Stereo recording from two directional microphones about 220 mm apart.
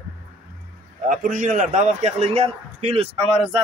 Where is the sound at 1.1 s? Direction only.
35° right (ahead or behind).